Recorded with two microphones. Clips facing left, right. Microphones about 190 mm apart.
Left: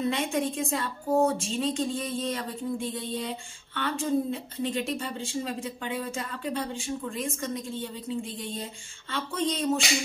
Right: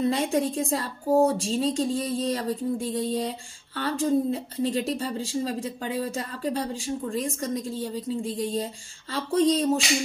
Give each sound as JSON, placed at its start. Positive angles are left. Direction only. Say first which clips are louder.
{"t": 0.0, "sound": "a woman's voice", "louder": "right 4 dB", "side_deg": -35}